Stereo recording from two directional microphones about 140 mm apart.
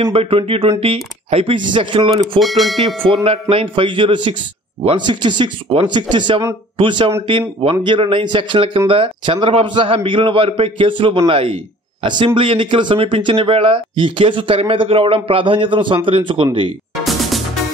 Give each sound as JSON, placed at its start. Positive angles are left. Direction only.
{"t": 0.1, "sound": "a man's voice", "side_deg": -40}
{"t": 2.4, "sound": "speech", "side_deg": 0}
{"t": 3.3, "sound": "a man's voice", "side_deg": -40}
{"t": 16.9, "sound": "music", "side_deg": 0}